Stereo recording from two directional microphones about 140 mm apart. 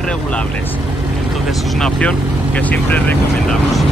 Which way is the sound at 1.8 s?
5° left (ahead or behind).